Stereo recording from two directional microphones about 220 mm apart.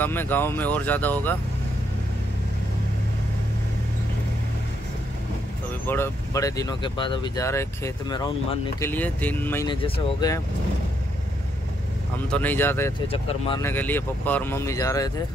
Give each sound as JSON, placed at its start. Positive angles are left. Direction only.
{"t": 0.0, "sound": "speech", "side_deg": 10}
{"t": 5.9, "sound": "speech", "side_deg": 10}
{"t": 9.7, "sound": "speech", "side_deg": 25}
{"t": 12.3, "sound": "speech", "side_deg": 10}
{"t": 13.1, "sound": "speech", "side_deg": 25}
{"t": 13.6, "sound": "speech", "side_deg": 10}